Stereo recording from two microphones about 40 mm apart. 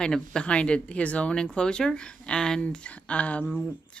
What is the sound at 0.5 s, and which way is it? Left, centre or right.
Speech, left.